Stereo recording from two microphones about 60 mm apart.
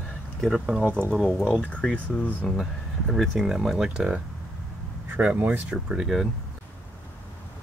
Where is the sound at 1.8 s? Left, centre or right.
Centre.